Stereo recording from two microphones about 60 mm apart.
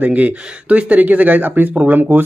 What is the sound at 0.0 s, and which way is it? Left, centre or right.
Speech, right.